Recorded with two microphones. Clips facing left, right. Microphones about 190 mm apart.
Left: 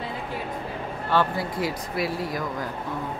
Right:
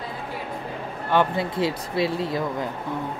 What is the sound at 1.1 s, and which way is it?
Speech, 20° right (ahead or behind).